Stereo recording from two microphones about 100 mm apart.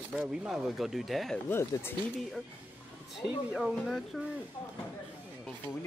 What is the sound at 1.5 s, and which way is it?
Speech, 20° left (ahead or behind).